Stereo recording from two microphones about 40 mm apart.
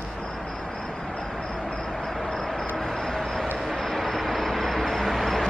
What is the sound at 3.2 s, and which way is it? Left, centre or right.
Vehicle, centre.